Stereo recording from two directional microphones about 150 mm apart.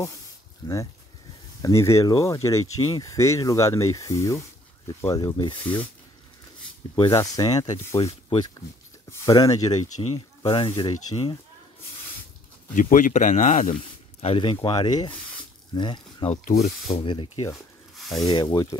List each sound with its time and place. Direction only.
0.6 s speech: 25° left (ahead or behind)
7.0 s speech: 25° left (ahead or behind)
8.0 s speech: 40° left (ahead or behind)
9.1 s speech: 20° left (ahead or behind)
10.4 s speech: 35° left (ahead or behind)
12.7 s speech: 60° left (ahead or behind)
14.2 s speech: 35° left (ahead or behind)
16.4 s speech: 60° left (ahead or behind)
16.9 s speech: 35° left (ahead or behind)
17.9 s rub: centre (ahead or behind)
18.2 s speech: 25° left (ahead or behind)